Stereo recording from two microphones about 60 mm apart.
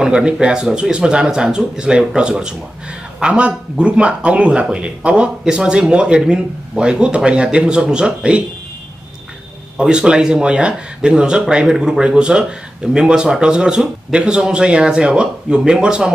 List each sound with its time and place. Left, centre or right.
0.0 s speech: centre
9.8 s speech: centre